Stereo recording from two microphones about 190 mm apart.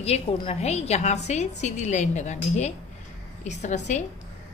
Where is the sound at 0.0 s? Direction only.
35° left (ahead or behind).